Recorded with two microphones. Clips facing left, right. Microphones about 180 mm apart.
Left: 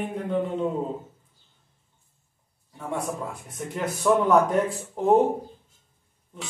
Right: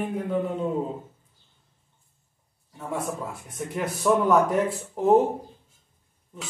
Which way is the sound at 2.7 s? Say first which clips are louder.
Even; centre (ahead or behind).